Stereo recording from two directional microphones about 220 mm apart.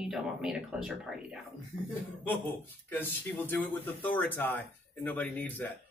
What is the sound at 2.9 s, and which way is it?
Speech, 10° left (ahead or behind).